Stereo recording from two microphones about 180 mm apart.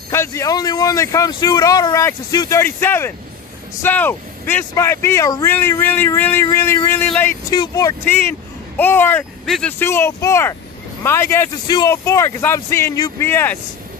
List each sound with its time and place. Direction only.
0.1 s speech: 15° left (ahead or behind)
7.5 s speech: 20° left (ahead or behind)